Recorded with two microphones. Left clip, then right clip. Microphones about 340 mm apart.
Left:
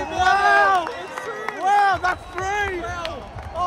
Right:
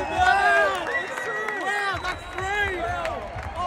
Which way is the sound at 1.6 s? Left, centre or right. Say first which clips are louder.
Left 12 dB; left.